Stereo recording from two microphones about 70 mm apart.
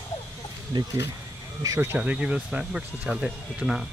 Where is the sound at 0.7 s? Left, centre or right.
Right.